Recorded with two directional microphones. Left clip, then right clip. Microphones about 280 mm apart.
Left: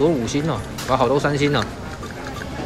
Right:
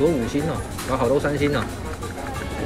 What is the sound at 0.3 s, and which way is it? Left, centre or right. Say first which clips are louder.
Speech: left 2 dB; centre.